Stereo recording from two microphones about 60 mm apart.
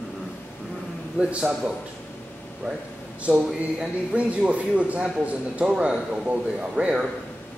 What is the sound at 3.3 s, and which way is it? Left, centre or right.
Speech, centre.